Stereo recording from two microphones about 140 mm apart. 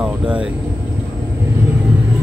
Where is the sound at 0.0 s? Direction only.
5° right (ahead or behind).